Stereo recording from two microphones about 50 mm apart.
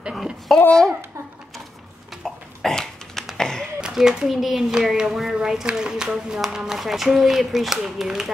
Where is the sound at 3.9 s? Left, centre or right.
Centre.